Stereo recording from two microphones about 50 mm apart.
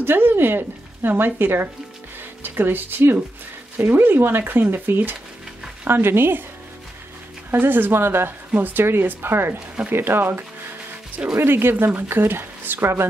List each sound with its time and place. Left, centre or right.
0.0 s speech: right
7.5 s speech: right
8.5 s speech: right